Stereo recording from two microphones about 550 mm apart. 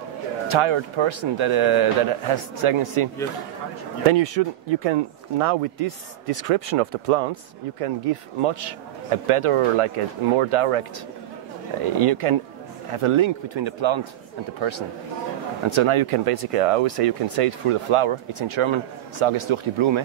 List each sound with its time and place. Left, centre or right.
0.5 s speech: right
4.1 s speech: right
7.8 s speech: right
11.8 s speech: right
15.7 s speech: right